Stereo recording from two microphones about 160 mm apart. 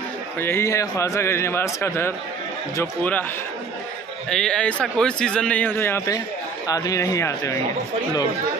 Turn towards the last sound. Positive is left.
turn(degrees=20)  # may be behind; listen again after turning